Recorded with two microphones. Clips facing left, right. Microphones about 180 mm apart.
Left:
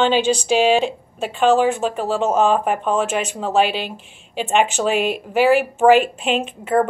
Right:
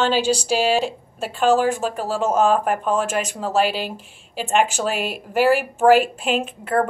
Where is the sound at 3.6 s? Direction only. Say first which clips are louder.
Even; 40° right (ahead or behind).